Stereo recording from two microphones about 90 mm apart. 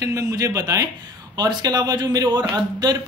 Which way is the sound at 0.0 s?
40° right (ahead or behind).